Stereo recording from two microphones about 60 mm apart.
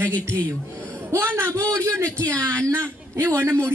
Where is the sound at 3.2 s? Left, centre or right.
Right.